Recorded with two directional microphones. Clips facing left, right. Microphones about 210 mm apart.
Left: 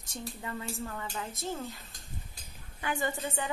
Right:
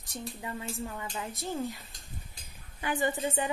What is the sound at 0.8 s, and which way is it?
Speech, 15° right (ahead or behind).